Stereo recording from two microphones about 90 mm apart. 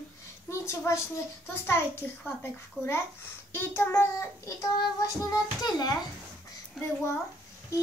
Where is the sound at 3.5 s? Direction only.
25° left (ahead or behind); by 5.9 s 45° left (ahead or behind).